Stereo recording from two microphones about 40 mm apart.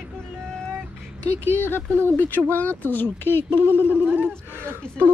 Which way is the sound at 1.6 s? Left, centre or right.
Left.